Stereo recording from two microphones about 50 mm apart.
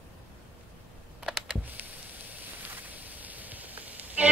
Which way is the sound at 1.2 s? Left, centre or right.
Centre.